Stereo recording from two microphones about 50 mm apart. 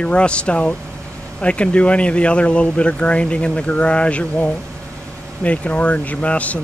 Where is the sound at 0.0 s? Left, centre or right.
Left.